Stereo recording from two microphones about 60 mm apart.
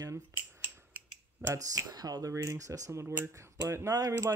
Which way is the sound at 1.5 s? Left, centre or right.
Right.